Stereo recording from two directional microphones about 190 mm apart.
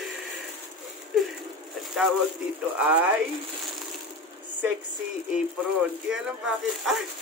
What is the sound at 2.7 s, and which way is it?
Speech, 10° right (ahead or behind).